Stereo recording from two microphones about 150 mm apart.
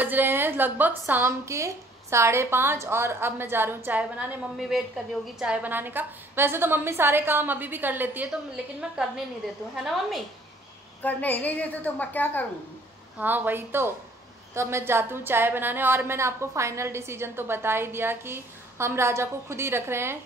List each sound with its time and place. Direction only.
0.0 s a woman's voice: 15° right (ahead or behind)
11.0 s a woman's voice: 10° left (ahead or behind)
13.2 s a woman's voice: 10° right (ahead or behind)